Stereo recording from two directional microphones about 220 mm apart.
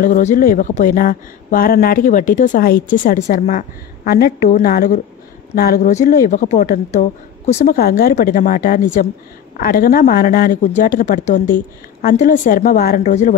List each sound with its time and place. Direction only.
0.0 s speech: 35° left (ahead or behind)
5.8 s speech: 30° left (ahead or behind)
7.7 s speech: 45° left (ahead or behind)